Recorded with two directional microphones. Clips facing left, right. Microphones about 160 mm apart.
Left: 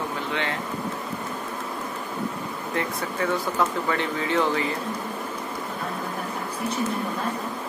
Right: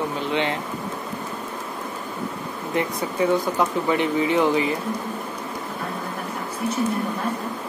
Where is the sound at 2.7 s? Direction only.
15° right (ahead or behind).